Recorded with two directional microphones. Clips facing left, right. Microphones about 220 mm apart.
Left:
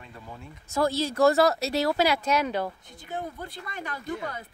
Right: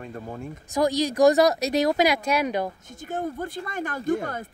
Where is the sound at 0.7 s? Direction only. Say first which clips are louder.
Right 3 dB; 15° right (ahead or behind).